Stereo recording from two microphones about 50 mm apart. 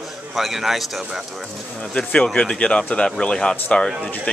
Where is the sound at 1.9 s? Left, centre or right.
Centre.